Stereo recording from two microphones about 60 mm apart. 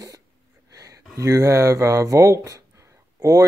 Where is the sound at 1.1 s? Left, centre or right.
Right.